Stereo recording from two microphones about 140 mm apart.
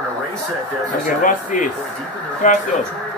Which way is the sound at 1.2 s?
70° left (ahead or behind).